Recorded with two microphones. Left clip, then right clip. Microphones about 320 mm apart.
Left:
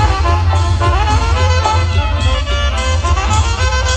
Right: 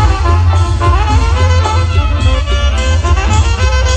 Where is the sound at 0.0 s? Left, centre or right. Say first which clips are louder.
Even; left.